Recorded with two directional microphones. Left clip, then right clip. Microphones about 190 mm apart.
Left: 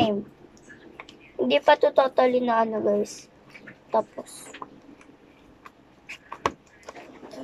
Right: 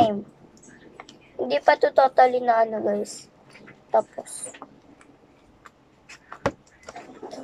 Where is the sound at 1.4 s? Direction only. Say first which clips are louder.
Even; 15° left (ahead or behind).